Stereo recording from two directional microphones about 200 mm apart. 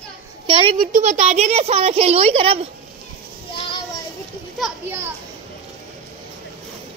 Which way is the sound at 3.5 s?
25° left (ahead or behind).